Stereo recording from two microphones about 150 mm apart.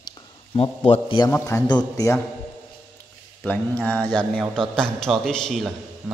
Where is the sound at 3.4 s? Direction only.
10° left (ahead or behind).